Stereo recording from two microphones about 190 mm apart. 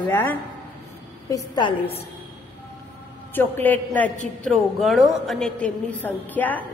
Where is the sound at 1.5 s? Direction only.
25° left (ahead or behind).